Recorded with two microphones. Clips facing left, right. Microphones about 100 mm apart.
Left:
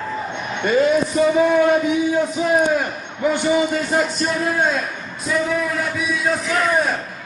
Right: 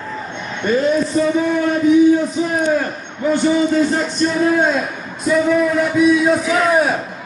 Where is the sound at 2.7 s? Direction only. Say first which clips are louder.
Right 2 dB; 15° left (ahead or behind).